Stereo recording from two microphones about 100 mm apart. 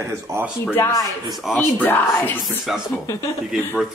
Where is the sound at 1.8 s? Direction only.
15° left (ahead or behind).